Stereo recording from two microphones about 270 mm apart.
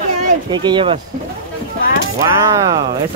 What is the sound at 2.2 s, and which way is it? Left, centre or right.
Speech, centre.